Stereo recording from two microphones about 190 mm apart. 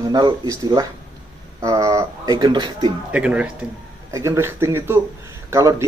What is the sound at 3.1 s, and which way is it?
Speech, 5° right (ahead or behind).